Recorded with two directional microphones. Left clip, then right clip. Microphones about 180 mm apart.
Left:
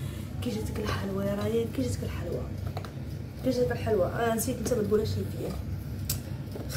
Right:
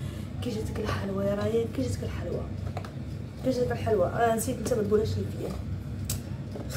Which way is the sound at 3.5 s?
Centre (ahead or behind).